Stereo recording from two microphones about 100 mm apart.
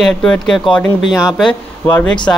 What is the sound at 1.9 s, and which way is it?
Speech, 20° left (ahead or behind).